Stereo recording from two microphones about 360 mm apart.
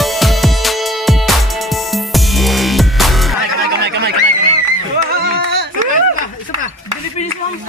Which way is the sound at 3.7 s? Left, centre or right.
Right.